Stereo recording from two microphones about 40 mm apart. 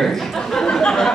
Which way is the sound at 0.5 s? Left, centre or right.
Centre.